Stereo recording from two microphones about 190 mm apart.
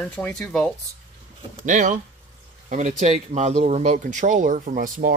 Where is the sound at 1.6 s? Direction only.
40° right (ahead or behind).